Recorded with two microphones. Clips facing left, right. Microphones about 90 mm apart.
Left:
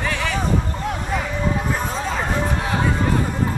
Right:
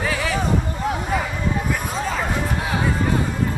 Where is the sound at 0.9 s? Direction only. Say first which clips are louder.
Right 3 dB; 5° right (ahead or behind).